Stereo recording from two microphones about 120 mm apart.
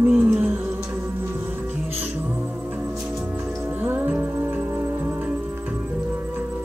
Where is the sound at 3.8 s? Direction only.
20° right (ahead or behind).